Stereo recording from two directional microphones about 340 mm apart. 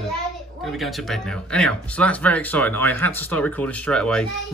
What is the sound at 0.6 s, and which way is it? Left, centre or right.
Speech, centre.